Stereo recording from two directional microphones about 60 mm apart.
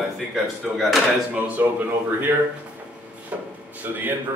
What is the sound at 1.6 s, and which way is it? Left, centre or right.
Speech, right.